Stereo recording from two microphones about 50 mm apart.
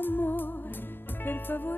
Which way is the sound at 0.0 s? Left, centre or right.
Left.